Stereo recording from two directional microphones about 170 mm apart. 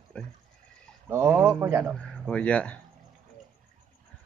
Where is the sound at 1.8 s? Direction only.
5° left (ahead or behind).